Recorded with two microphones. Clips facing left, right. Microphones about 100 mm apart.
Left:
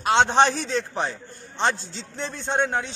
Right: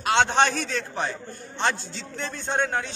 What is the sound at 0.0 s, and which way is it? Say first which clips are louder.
A man's voice: left 2 dB; 30° left (ahead or behind).